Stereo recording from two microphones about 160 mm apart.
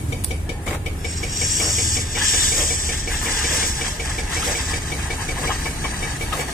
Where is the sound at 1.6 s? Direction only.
55° left (ahead or behind).